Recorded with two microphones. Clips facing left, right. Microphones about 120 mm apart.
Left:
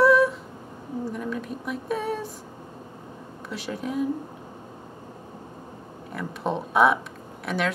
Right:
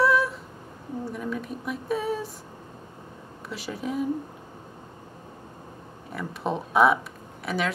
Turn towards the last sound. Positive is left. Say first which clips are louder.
# left 1 dB
turn(degrees=0)  # may be behind; listen again after turning